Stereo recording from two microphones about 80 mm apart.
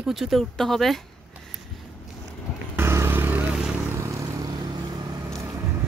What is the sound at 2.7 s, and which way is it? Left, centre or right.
Vehicle, right.